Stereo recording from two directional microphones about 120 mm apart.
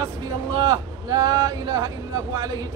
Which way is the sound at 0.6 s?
30° right (ahead or behind).